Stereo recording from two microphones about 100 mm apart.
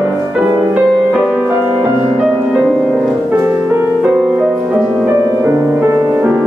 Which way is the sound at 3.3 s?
20° right (ahead or behind).